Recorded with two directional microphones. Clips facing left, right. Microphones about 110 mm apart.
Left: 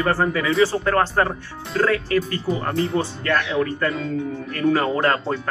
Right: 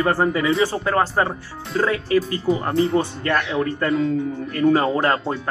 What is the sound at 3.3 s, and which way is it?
Speech, 25° right (ahead or behind).